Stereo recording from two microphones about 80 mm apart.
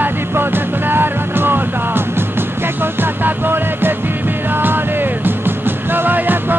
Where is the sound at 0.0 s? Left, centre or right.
Right.